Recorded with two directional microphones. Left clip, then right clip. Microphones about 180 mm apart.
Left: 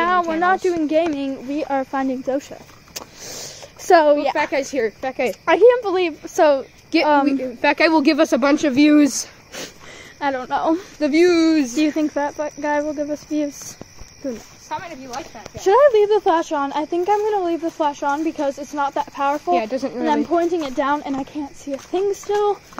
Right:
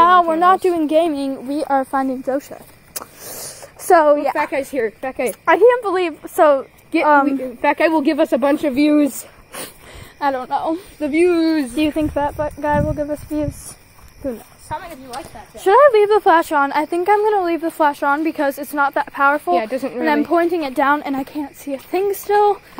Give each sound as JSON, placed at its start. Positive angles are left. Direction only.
{"t": 0.0, "sound": "speech", "side_deg": -40}
{"t": 2.2, "sound": "vehicle", "side_deg": -15}
{"t": 4.4, "sound": "speech", "side_deg": -25}
{"t": 5.3, "sound": "a woman's voice", "side_deg": -10}
{"t": 7.8, "sound": "speech", "side_deg": 15}
{"t": 10.2, "sound": "a woman's voice", "side_deg": -5}
{"t": 10.5, "sound": "speech", "side_deg": 20}
{"t": 18.9, "sound": "speech", "side_deg": -20}